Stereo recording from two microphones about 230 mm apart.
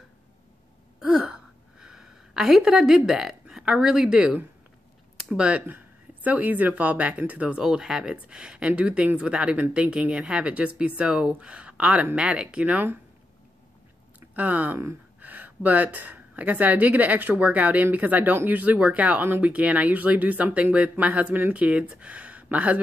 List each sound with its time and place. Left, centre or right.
0.9 s a sound: centre
5.3 s speech: centre
14.3 s speech: centre